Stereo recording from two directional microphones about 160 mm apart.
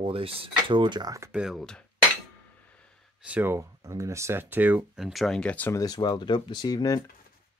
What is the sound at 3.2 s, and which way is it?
Speech, 10° right (ahead or behind).